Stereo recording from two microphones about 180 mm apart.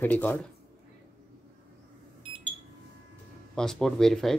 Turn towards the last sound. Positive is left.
turn(degrees=5)  # may be behind; listen again after turning